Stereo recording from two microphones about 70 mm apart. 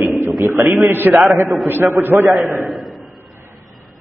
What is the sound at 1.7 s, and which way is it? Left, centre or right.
Speech, right.